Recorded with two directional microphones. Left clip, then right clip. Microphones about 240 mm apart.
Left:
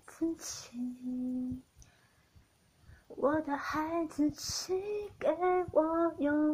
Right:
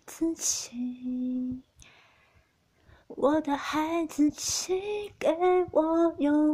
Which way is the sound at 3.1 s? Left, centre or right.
Right.